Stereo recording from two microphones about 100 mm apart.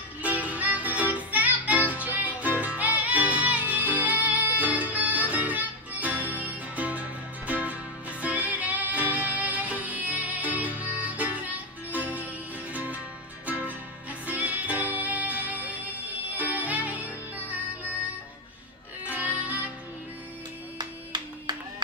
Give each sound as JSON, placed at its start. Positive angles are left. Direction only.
{"t": 0.2, "sound": "music", "side_deg": -15}
{"t": 19.0, "sound": "music", "side_deg": -15}
{"t": 20.7, "sound": "music", "side_deg": -50}